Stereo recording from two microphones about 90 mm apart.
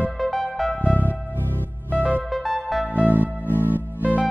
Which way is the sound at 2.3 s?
Centre (ahead or behind).